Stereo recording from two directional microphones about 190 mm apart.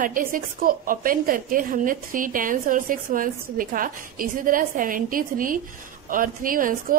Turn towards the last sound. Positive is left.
turn(degrees=-45)  # may be behind; listen again after turning